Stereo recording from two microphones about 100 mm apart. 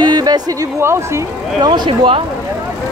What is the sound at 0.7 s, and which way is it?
Speech, 25° right (ahead or behind).